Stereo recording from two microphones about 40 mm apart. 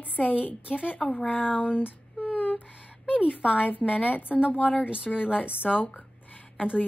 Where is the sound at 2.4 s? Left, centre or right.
Left.